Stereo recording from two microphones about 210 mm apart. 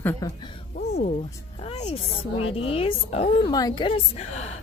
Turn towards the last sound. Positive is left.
turn(degrees=30)  # may be behind; listen again after turning